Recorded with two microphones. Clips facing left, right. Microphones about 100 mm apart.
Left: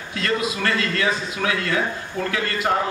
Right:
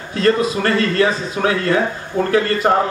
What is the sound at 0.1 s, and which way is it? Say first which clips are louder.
A man's voice: right 8 dB; 35° right (ahead or behind).